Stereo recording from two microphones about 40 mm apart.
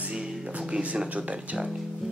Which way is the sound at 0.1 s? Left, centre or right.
Right.